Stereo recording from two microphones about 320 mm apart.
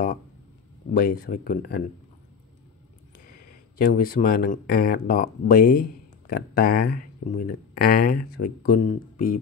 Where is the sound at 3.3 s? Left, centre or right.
Left.